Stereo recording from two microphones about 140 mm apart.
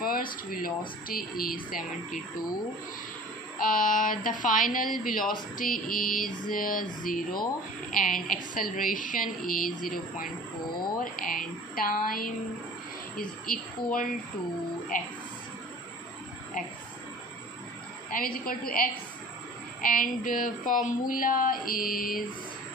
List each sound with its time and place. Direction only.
0.0 s speech: 90° left
3.6 s speech: 80° left
13.5 s music: 90° left
14.9 s speech: 70° left (ahead or behind)
18.1 s music: 90° left
19.8 s speech: 75° left (ahead or behind)
21.1 s music: 85° left